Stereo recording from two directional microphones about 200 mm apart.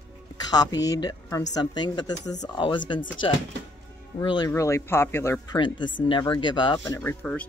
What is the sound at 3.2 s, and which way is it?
Speech, 75° left (ahead or behind).